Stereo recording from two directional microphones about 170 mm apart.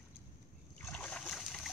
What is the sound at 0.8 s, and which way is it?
Boat, 10° left (ahead or behind).